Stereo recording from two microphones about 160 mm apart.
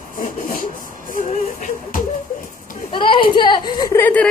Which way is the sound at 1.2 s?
55° left (ahead or behind).